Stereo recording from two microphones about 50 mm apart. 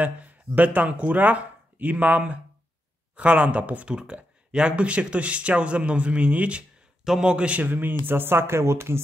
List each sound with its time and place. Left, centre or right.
0.0 s speech: right
7.6 s speech: right